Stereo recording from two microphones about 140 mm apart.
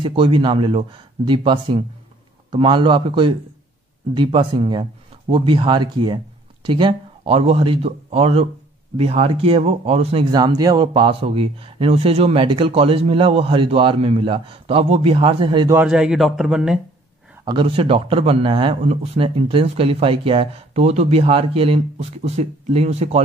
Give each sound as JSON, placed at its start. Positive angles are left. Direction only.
{"t": 0.0, "sound": "speech", "side_deg": -35}
{"t": 10.3, "sound": "speech", "side_deg": -30}
{"t": 10.9, "sound": "speech", "side_deg": -40}
{"t": 15.7, "sound": "speech", "side_deg": -5}
{"t": 17.5, "sound": "speech", "side_deg": -40}